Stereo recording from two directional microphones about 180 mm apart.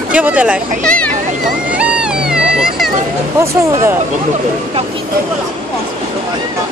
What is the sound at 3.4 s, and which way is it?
Speech, 15° right (ahead or behind).